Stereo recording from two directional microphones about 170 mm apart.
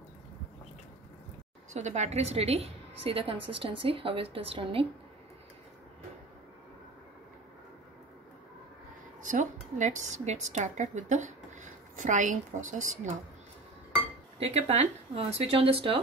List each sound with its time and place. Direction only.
1.7 s a woman's voice: 45° right (ahead or behind)
9.2 s speech: 50° right (ahead or behind)
14.4 s a woman's voice: 40° right (ahead or behind)